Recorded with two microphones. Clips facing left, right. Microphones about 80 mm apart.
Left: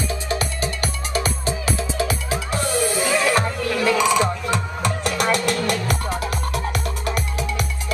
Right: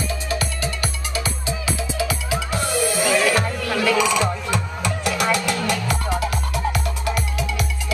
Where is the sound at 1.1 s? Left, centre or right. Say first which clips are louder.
Left 5 dB; left.